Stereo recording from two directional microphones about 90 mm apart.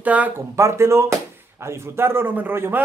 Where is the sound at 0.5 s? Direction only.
30° right (ahead or behind).